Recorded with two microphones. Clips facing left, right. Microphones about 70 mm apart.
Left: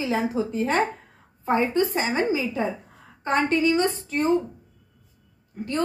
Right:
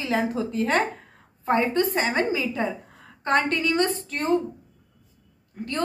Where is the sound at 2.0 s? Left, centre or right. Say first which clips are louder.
Even; centre.